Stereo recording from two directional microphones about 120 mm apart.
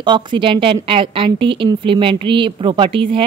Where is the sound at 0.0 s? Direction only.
40° right (ahead or behind).